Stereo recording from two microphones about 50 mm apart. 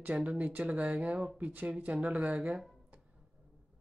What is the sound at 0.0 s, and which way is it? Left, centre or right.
Speech, right.